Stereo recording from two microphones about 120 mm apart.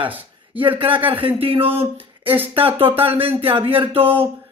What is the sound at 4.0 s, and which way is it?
Speech, 15° right (ahead or behind).